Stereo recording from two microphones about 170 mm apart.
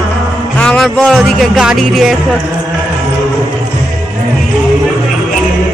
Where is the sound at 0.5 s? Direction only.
5° left (ahead or behind).